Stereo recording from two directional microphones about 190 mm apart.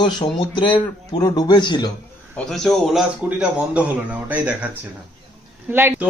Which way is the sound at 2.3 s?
Centre (ahead or behind).